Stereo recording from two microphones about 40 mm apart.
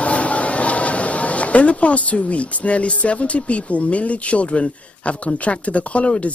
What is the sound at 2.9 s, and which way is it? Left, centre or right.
Speech, left.